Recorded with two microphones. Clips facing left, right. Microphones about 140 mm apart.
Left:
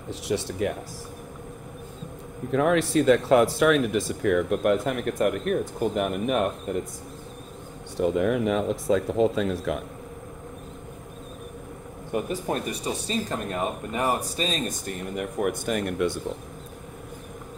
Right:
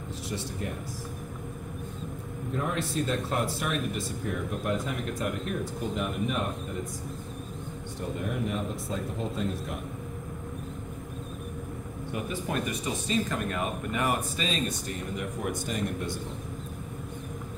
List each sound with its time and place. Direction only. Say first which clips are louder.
0.3 s speech: left 9 dB; 90° left
2.5 s speech: left 10 dB; 90° left; by 6.8 s 60° left (ahead or behind)
8.0 s speech: left 10 dB; 90° left
12.1 s speech: left 6 dB; 40° left (ahead or behind)
15.1 s speech: left 8 dB; 60° left (ahead or behind)